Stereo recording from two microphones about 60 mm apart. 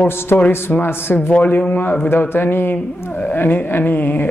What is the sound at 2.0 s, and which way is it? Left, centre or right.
Speech, left.